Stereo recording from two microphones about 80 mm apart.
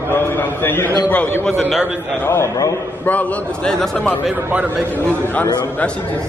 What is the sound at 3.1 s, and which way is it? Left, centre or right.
Speech, centre.